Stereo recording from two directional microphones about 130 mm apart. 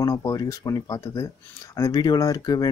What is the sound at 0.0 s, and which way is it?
Speech, 30° left (ahead or behind).